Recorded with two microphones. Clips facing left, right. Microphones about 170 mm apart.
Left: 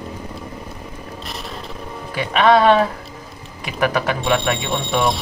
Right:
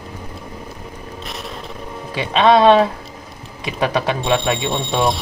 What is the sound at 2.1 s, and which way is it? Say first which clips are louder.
Speech: right 1 dB; 20° right (ahead or behind).